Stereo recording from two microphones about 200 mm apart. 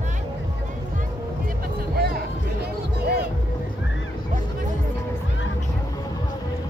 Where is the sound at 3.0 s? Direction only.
50° right (ahead or behind).